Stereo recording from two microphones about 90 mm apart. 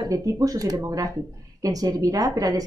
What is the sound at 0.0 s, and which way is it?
A woman's voice, 40° right (ahead or behind).